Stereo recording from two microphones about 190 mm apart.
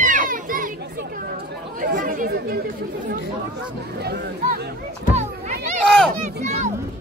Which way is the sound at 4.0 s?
60° right (ahead or behind).